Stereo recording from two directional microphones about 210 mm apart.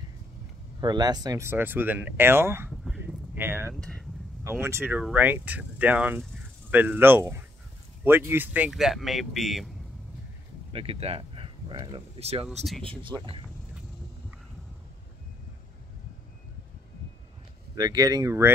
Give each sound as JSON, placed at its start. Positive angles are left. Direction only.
{"t": 0.7, "sound": "speech", "side_deg": -20}
{"t": 2.8, "sound": "a sound", "side_deg": 0}
{"t": 4.5, "sound": "speech", "side_deg": -10}
{"t": 10.7, "sound": "speech", "side_deg": -25}
{"t": 12.4, "sound": "speech", "side_deg": 0}
{"t": 13.0, "sound": "speech", "side_deg": -25}
{"t": 17.7, "sound": "speech", "side_deg": -20}